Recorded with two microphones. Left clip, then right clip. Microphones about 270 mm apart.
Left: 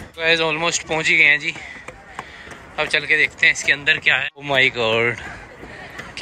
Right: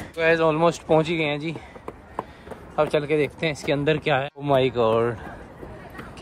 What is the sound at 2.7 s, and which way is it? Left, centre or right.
Speech, centre.